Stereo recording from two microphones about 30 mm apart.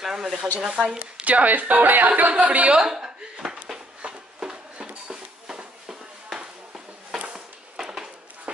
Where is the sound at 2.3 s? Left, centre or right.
Right.